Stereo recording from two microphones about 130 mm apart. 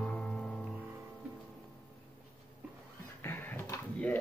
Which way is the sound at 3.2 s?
15° left (ahead or behind).